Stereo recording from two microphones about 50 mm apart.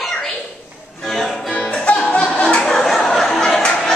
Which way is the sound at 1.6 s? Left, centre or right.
Left.